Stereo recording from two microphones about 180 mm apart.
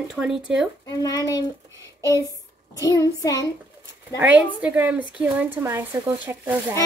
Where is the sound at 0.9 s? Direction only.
20° left (ahead or behind).